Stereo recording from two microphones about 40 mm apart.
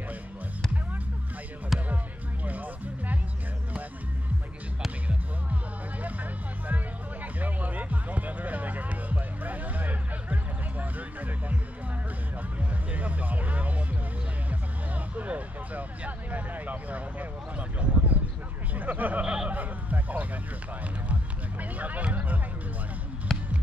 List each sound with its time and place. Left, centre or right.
1.7 s music: centre
2.4 s music: right
7.3 s music: right
12.9 s music: right
15.1 s a sound: right
18.8 s a sound: right
19.2 s a sound: right
19.5 s honk: right
21.1 s music: right
23.3 s music: centre